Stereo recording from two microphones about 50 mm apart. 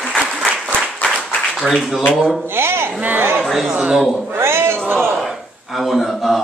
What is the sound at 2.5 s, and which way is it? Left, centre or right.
Speech, right.